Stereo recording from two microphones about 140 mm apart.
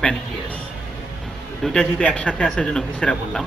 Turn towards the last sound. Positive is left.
turn(degrees=5)  # may be behind; listen again after turning